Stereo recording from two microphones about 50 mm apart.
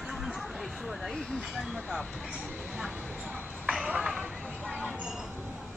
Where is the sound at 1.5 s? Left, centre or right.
Centre.